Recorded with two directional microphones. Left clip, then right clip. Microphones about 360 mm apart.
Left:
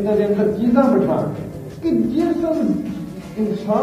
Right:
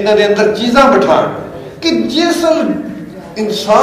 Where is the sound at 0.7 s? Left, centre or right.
Centre.